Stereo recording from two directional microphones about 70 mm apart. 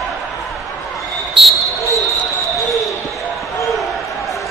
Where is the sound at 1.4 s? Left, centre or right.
Centre.